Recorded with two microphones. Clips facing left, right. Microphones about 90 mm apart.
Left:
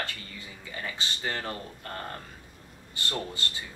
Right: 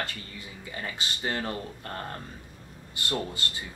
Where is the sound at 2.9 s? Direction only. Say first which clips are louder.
Right 2 dB; 15° right (ahead or behind).